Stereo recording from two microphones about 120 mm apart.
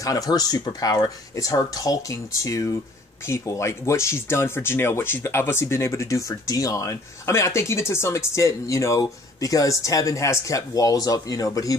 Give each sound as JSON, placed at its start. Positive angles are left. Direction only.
{"t": 0.0, "sound": "speech", "side_deg": 30}